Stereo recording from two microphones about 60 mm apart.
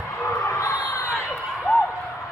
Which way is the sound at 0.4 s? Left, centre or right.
Left.